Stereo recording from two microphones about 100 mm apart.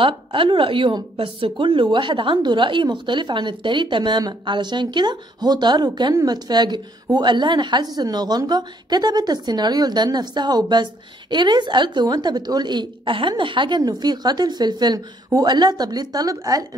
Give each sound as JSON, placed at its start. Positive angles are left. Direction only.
{"t": 0.0, "sound": "a woman's voice", "side_deg": -60}